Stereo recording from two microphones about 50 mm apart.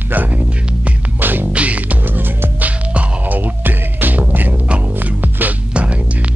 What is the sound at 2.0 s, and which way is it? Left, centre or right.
Music, right.